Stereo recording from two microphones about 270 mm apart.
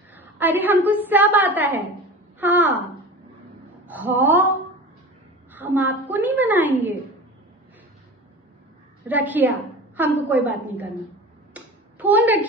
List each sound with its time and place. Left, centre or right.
0.1 s a sound: centre
0.8 s a woman's voice: centre
3.8 s a woman's voice: centre
5.5 s a woman's voice: centre
9.0 s a woman's voice: centre
11.5 s a sound: centre